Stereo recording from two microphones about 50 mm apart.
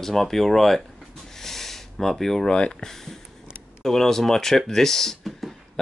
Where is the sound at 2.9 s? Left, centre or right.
Centre.